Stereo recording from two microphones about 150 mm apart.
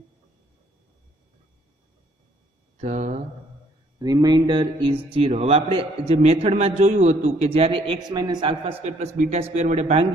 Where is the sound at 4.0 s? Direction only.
25° right (ahead or behind).